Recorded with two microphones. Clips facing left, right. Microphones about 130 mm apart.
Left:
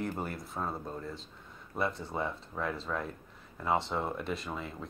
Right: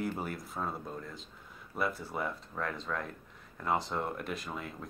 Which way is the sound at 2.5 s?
5° left (ahead or behind).